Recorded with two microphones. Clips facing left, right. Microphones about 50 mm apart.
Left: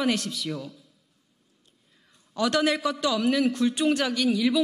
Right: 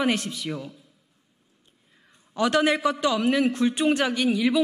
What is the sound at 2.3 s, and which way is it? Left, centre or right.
Speech, right.